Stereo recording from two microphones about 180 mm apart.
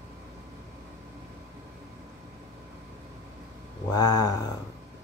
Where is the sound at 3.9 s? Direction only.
20° left (ahead or behind).